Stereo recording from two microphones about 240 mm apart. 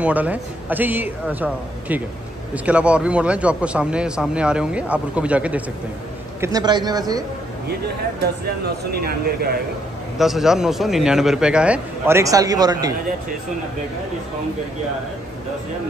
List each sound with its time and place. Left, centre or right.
0.0 s a man's voice: centre
6.4 s speech: centre
8.2 s speech: right
10.1 s a man's voice: centre